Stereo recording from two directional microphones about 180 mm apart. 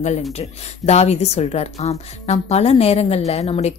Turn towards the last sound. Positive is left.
turn(degrees=35)  # may be behind; listen again after turning